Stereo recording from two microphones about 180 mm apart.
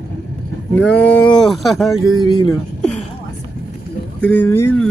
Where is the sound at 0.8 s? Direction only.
10° left (ahead or behind).